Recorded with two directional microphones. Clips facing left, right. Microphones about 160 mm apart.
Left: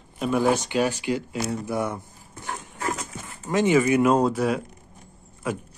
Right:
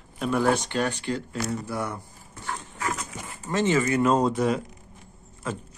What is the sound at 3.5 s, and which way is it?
Speech, 15° left (ahead or behind).